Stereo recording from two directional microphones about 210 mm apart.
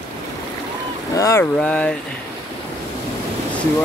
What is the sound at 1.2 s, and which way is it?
Speech, 15° left (ahead or behind).